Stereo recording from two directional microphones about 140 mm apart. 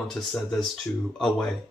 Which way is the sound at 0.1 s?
5° left (ahead or behind).